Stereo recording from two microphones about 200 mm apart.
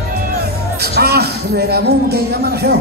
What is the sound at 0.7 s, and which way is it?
Speech, 55° right (ahead or behind).